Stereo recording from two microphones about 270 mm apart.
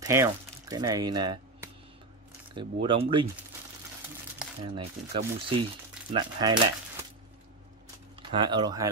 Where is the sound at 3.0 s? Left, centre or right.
Centre.